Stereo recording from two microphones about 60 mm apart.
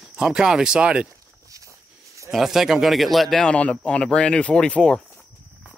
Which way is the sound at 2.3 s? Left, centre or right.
Centre.